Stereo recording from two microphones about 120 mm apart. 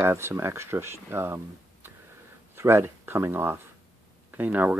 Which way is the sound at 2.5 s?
20° right (ahead or behind).